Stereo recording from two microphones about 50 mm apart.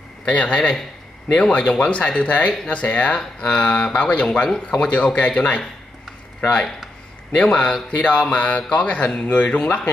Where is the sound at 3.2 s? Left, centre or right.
Centre.